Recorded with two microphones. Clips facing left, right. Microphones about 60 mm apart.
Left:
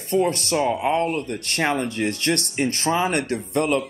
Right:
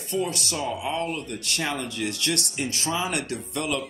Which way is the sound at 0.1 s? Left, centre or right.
Left.